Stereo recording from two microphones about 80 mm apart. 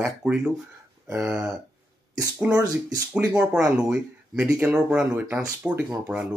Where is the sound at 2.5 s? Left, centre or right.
Right.